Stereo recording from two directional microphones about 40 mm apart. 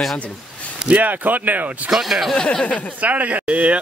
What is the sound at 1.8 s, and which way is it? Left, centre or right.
Speech, centre.